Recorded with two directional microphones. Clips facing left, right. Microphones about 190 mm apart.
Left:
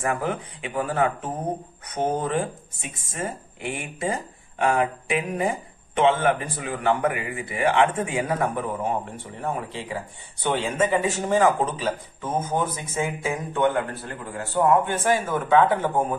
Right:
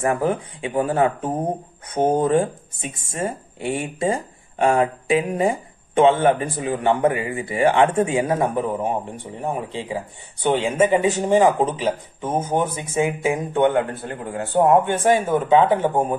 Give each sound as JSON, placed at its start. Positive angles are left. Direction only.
{"t": 0.1, "sound": "speech", "side_deg": -30}
{"t": 2.0, "sound": "speech", "side_deg": -50}
{"t": 2.2, "sound": "speech", "side_deg": -30}